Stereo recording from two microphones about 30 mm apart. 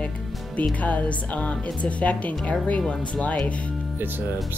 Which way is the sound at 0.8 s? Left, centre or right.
Left.